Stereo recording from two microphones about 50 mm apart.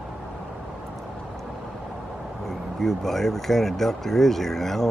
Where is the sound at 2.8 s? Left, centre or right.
Centre.